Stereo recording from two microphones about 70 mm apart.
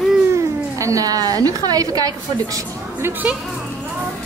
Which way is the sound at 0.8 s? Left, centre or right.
Right.